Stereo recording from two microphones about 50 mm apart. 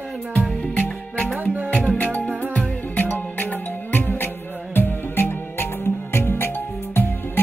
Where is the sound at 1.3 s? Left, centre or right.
Right.